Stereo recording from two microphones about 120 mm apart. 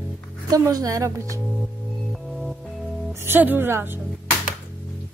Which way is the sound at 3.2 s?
15° right (ahead or behind).